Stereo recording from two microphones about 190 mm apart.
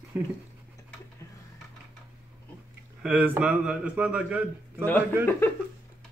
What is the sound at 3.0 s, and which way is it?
A man's voice, 5° right (ahead or behind).